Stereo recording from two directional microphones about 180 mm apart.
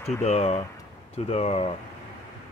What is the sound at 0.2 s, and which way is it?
Speech, 35° left (ahead or behind).